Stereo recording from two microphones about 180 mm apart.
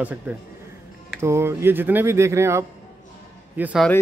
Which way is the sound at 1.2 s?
15° right (ahead or behind).